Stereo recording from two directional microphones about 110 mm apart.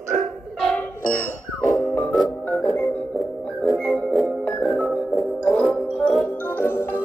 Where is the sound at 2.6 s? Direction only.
20° left (ahead or behind).